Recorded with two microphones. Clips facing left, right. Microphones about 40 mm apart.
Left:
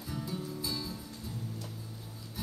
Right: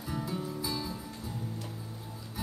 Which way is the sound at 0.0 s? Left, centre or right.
Centre.